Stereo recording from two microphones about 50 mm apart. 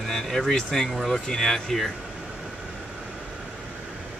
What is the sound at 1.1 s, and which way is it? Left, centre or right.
Speech, centre.